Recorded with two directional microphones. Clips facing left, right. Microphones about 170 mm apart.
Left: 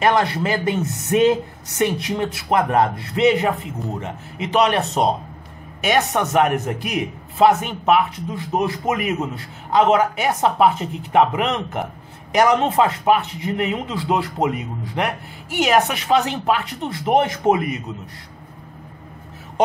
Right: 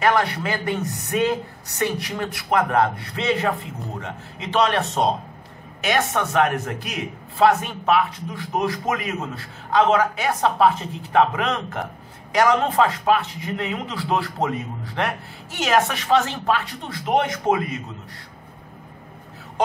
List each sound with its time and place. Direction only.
0.0 s speech: 25° left (ahead or behind)
4.6 s speech: 20° left (ahead or behind)